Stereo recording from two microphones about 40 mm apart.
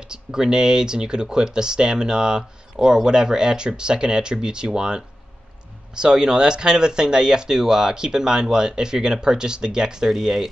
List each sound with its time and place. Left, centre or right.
0.0 s speech: centre